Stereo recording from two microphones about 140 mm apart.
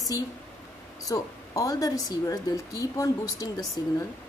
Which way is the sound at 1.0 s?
25° left (ahead or behind).